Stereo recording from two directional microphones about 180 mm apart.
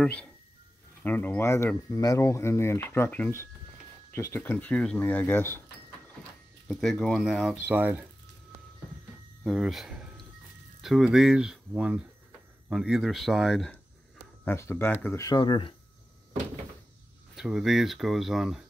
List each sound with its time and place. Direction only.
0.0 s speech: 5° left (ahead or behind)
6.7 s speech: centre (ahead or behind)
9.4 s a sound: centre (ahead or behind)
10.8 s speech: centre (ahead or behind)
14.4 s speech: 15° left (ahead or behind)
17.4 s speech: centre (ahead or behind)